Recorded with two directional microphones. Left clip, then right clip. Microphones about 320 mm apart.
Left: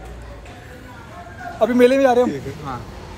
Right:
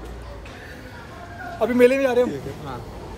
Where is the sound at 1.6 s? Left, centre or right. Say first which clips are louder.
Left 3 dB; centre.